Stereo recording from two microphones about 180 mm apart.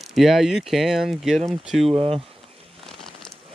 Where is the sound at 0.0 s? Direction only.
Centre (ahead or behind).